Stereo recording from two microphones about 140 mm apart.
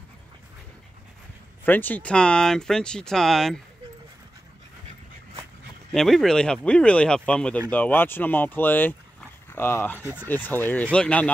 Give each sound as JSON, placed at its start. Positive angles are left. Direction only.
{"t": 1.6, "sound": "speech", "side_deg": 15}
{"t": 5.9, "sound": "speech", "side_deg": 0}